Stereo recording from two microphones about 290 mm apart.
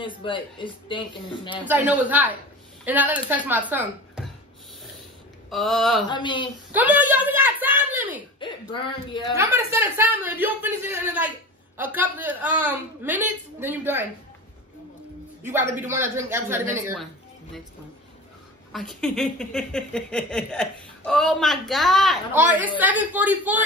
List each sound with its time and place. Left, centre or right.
0.0 s a man's voice: centre
1.7 s speech: centre
5.5 s speech: centre
6.0 s a man's voice: centre
6.7 s a sound: centre
8.4 s speech: centre
9.4 s speech: centre
15.4 s speech: centre
18.7 s speech: centre